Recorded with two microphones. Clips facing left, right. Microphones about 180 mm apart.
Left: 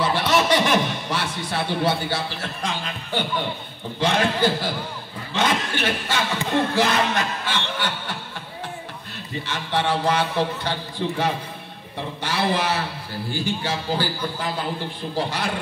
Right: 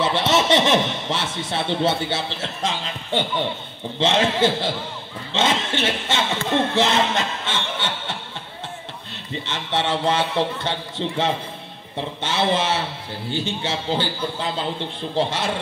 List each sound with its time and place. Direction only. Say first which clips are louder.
0.0 s a man's voice: right 1 dB; 25° right (ahead or behind)
9.5 s speech: even; 25° right (ahead or behind)